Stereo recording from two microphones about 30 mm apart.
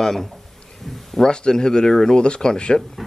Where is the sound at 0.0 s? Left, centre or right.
Centre.